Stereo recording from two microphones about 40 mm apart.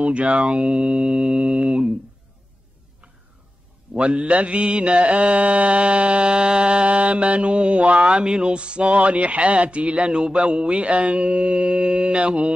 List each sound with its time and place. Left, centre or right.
0.0 s speech: right
3.9 s mantra: right